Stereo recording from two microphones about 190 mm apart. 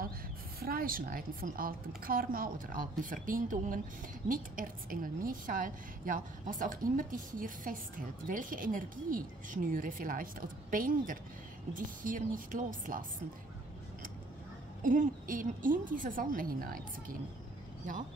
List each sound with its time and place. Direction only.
0.6 s a woman's voice: 50° right (ahead or behind)
14.8 s a woman's voice: 45° right (ahead or behind)